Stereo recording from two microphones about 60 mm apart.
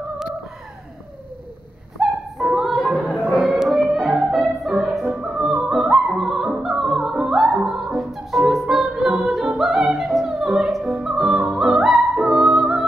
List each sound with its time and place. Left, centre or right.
2.0 s a sound: centre
2.4 s music: centre
3.1 s music: centre
3.3 s music: centre
5.2 s opera: centre
7.6 s music: centre